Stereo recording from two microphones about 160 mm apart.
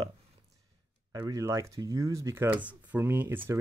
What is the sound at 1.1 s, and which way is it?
Speech, 25° right (ahead or behind).